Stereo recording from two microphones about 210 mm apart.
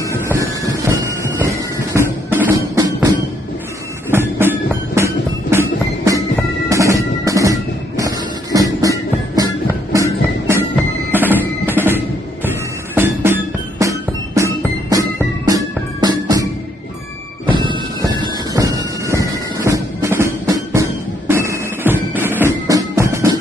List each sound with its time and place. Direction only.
0.8 s a sound: 15° right (ahead or behind)
2.0 s music: 10° right (ahead or behind)
10.5 s music: 10° right (ahead or behind)
17.5 s music: 20° right (ahead or behind)